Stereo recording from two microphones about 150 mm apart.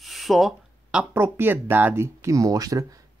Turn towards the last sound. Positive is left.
turn(degrees=-25)  # may be behind; listen again after turning